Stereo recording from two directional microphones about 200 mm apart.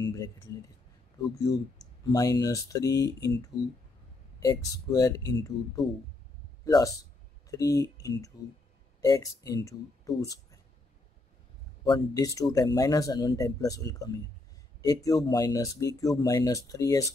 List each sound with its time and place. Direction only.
0.0 s speech: 15° left (ahead or behind)
1.5 s speech: 15° left (ahead or behind)
4.4 s speech: 15° left (ahead or behind)
6.6 s speech: 15° left (ahead or behind)
11.8 s speech: 15° left (ahead or behind)